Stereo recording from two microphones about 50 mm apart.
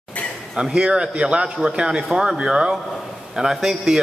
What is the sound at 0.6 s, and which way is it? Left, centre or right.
A man's voice, centre.